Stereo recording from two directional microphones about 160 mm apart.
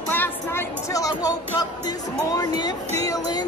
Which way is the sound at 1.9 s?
25° left (ahead or behind).